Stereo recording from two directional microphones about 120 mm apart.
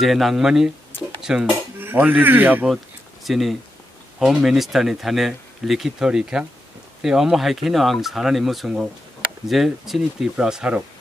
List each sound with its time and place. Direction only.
0.0 s speech: centre (ahead or behind)
1.8 s a man's voice: 15° right (ahead or behind)
3.3 s speech: centre (ahead or behind)